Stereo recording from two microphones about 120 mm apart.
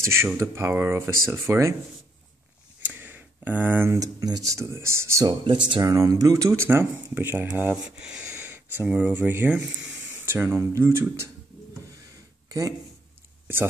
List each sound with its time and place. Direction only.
0.0 s speech: 25° right (ahead or behind)
2.9 s speech: 15° right (ahead or behind)
12.4 s a sound: 30° right (ahead or behind)